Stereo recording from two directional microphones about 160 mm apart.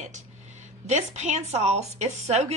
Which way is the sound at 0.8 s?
45° right (ahead or behind).